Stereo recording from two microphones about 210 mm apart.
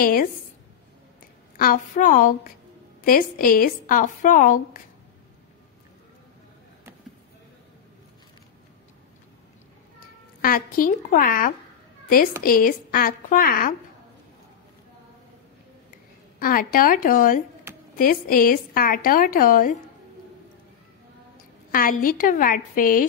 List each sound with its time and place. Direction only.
0.0 s a woman's voice: 45° left (ahead or behind)
1.6 s a woman's voice: 40° left (ahead or behind)
10.4 s a woman's voice: 40° left (ahead or behind)
16.3 s a woman's voice: 40° left (ahead or behind)
21.7 s a woman's voice: 40° left (ahead or behind)